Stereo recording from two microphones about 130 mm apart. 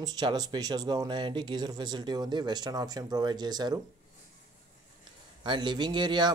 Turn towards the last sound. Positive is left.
turn(degrees=-35)  # may be behind; listen again after turning